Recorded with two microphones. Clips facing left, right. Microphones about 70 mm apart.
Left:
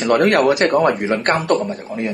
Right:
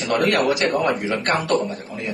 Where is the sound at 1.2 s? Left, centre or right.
Left.